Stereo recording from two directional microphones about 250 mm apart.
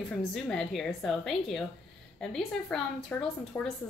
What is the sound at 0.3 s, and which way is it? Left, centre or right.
Speech, centre.